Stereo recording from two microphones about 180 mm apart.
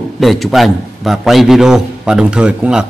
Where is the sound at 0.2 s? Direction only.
Centre (ahead or behind).